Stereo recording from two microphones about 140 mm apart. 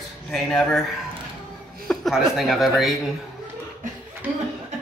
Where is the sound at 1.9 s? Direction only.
Centre (ahead or behind).